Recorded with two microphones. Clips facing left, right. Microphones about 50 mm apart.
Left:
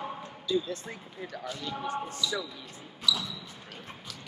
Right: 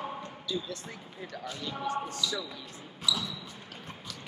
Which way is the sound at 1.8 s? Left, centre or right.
Left.